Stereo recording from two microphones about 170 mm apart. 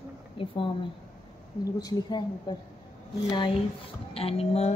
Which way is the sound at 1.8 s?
20° left (ahead or behind).